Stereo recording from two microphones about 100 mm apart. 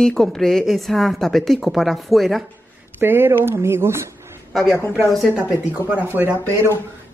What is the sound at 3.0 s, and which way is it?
Speech, 20° right (ahead or behind).